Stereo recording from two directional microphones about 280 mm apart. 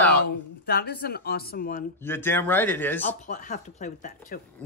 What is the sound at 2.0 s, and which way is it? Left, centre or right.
Speech, centre.